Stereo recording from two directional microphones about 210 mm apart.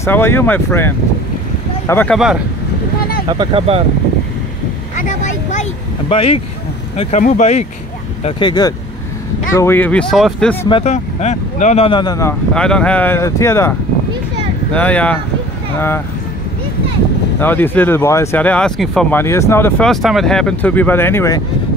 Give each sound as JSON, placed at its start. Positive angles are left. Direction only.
{"t": 0.0, "sound": "speech", "side_deg": 10}
{"t": 3.3, "sound": "speech", "side_deg": -25}
{"t": 4.9, "sound": "vehicle", "side_deg": 35}
{"t": 7.0, "sound": "speech", "side_deg": 35}
{"t": 9.6, "sound": "speech", "side_deg": 10}
{"t": 10.7, "sound": "speech", "side_deg": 30}
{"t": 17.4, "sound": "speech", "side_deg": 10}